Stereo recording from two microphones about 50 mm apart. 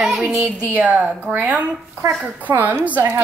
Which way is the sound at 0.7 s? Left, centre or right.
Right.